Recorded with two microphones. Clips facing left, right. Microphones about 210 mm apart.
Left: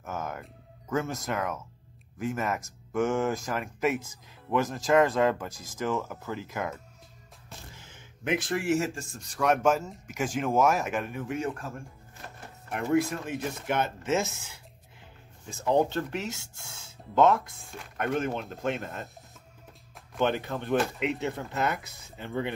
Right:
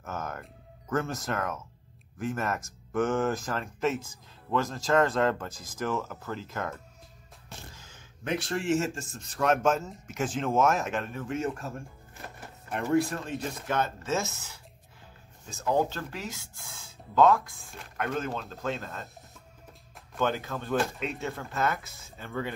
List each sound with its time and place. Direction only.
0.0 s speech: 15° left (ahead or behind)
7.7 s a sound: 20° left (ahead or behind)
8.9 s speech: centre (ahead or behind)
12.8 s speech: 15° left (ahead or behind)
15.6 s speech: 20° left (ahead or behind)
20.2 s speech: 20° left (ahead or behind)